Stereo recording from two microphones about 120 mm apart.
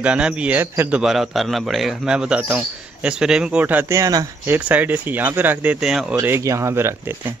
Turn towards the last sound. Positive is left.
turn(degrees=-20)  # may be behind; listen again after turning